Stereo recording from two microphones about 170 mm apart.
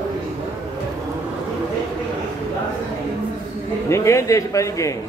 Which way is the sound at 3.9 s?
15° left (ahead or behind).